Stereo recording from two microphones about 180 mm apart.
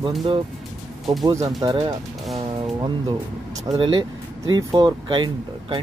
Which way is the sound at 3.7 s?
30° right (ahead or behind).